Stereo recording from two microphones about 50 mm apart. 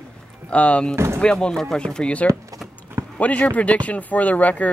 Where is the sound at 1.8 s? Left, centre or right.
Left.